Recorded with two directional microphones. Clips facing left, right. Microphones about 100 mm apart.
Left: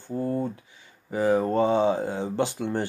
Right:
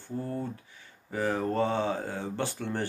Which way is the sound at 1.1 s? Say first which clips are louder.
Left 6 dB; 15° left (ahead or behind).